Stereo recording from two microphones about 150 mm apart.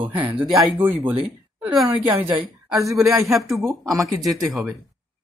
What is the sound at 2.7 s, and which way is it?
Speech, 20° right (ahead or behind).